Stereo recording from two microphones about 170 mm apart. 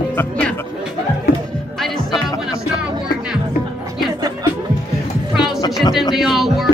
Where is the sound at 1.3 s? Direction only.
65° left (ahead or behind).